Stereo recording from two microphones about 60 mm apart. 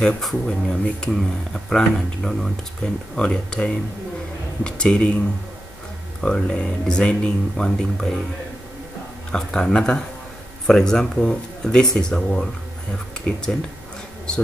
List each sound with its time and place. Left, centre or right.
0.0 s speech: centre
6.2 s speech: centre
9.3 s speech: centre